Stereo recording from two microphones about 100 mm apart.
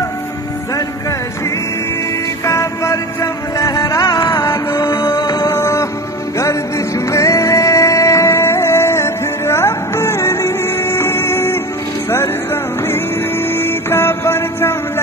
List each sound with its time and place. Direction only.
2.4 s music: 30° left (ahead or behind)
4.8 s music: 35° left (ahead or behind)
5.5 s music: 30° left (ahead or behind)
7.1 s music: 30° left (ahead or behind)
12.8 s music: 25° left (ahead or behind)